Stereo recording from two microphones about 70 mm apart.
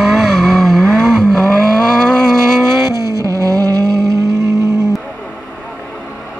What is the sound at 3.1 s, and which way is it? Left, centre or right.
Vehicle, right.